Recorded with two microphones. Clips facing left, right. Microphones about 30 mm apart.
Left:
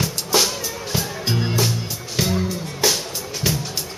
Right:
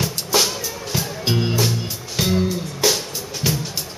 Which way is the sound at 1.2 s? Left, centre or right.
Centre.